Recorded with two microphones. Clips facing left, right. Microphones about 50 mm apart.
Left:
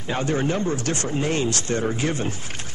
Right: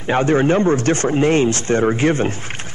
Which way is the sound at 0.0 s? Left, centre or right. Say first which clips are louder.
Right 8 dB; right.